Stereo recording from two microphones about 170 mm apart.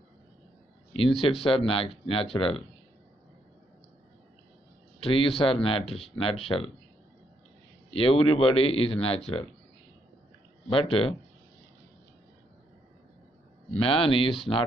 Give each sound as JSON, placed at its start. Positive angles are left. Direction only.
{"t": 0.9, "sound": "speech", "side_deg": 35}
{"t": 5.0, "sound": "speech", "side_deg": 35}
{"t": 7.9, "sound": "speech", "side_deg": 35}
{"t": 10.7, "sound": "speech", "side_deg": 30}
{"t": 13.7, "sound": "speech", "side_deg": 30}